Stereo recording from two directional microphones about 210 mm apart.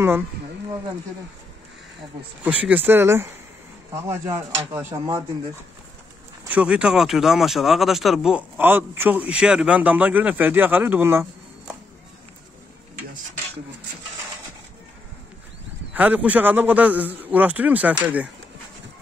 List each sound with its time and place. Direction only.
2.4 s speech: 5° right (ahead or behind)
6.5 s speech: 5° right (ahead or behind)
15.9 s speech: 5° right (ahead or behind)